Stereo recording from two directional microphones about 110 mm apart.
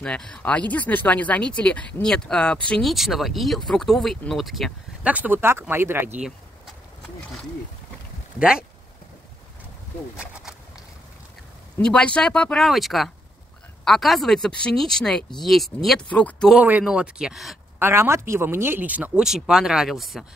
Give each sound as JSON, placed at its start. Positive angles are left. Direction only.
{"t": 0.0, "sound": "speech", "side_deg": 10}
{"t": 2.9, "sound": "speech", "side_deg": 0}
{"t": 5.0, "sound": "speech", "side_deg": -15}
{"t": 8.4, "sound": "speech", "side_deg": -10}
{"t": 10.1, "sound": "speech", "side_deg": -10}
{"t": 11.8, "sound": "speech", "side_deg": 10}
{"t": 16.1, "sound": "speech", "side_deg": 10}
{"t": 16.5, "sound": "speech", "side_deg": -10}
{"t": 17.7, "sound": "speech", "side_deg": -20}